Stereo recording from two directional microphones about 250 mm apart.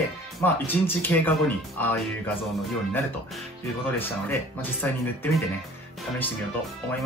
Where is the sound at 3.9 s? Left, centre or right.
Centre.